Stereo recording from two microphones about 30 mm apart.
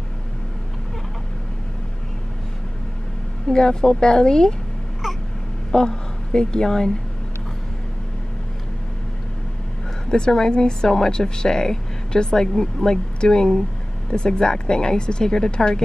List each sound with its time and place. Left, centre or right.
3.4 s speech: left
5.7 s a woman's voice: left
10.0 s speech: left
13.2 s speech: left